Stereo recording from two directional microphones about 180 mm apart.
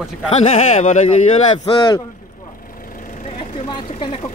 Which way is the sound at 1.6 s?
30° left (ahead or behind).